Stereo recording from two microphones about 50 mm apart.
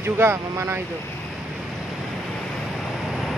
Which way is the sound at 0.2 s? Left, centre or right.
Right.